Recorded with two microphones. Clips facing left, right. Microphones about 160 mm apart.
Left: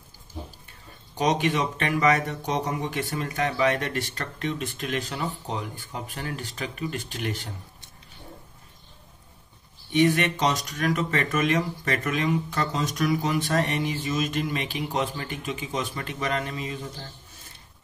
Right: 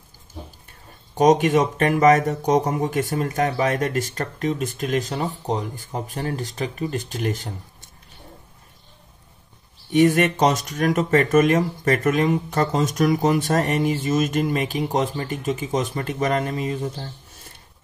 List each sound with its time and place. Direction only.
1.1 s speech: 45° right (ahead or behind)
9.9 s speech: 45° right (ahead or behind)